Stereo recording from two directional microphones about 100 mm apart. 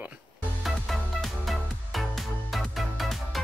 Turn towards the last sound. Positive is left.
turn(degrees=0)  # may be behind; listen again after turning